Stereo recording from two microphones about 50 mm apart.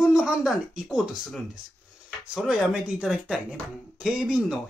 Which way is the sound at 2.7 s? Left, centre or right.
Right.